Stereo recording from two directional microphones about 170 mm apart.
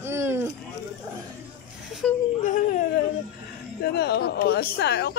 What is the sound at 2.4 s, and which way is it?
Speech, 50° left (ahead or behind).